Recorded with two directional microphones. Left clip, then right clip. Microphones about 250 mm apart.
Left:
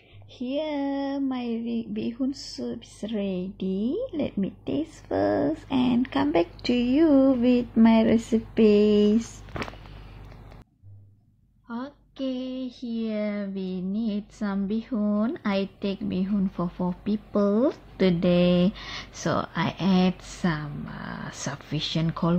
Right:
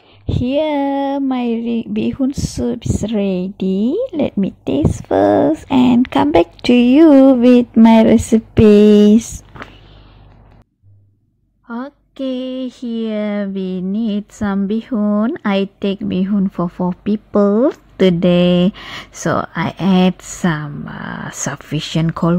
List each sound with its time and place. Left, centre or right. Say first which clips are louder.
0.3 s speech: right 13 dB; right
11.6 s speech: right 9 dB; right